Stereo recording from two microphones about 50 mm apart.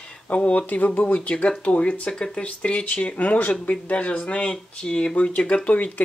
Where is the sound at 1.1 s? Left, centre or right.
Left.